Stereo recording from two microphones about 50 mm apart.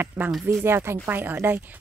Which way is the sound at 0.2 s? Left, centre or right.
Right.